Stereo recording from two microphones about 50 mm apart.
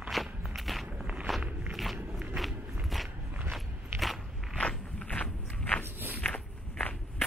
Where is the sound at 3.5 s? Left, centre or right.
Centre.